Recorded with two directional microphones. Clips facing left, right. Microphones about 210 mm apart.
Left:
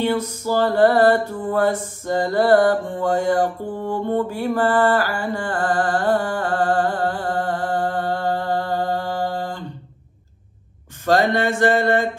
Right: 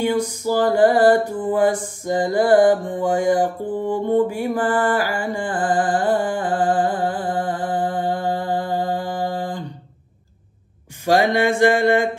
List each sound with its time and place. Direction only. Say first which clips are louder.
0.0 s music: right 1 dB; 15° right (ahead or behind)
1.5 s mantra: right 1 dB; 15° right (ahead or behind)
11.1 s music: right 1 dB; 15° right (ahead or behind)